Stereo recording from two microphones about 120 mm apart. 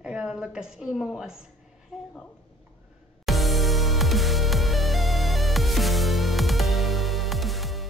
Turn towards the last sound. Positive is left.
turn(degrees=0)  # may be behind; listen again after turning